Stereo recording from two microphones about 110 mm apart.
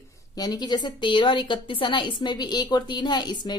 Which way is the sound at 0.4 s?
40° left (ahead or behind).